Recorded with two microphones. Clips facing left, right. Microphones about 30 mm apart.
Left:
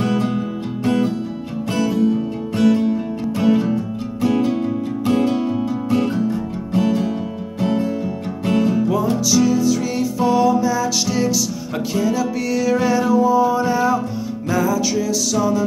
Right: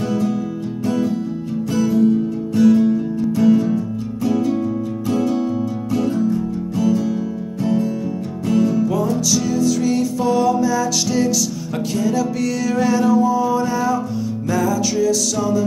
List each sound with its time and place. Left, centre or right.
0.1 s music: left
7.6 s music: left
9.2 s music: centre
13.3 s music: left
14.5 s music: centre